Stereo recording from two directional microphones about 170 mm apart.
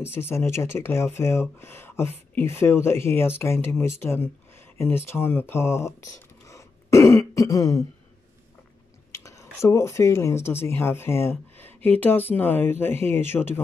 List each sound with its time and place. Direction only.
0.1 s speech: 15° left (ahead or behind)
9.1 s speech: 20° left (ahead or behind)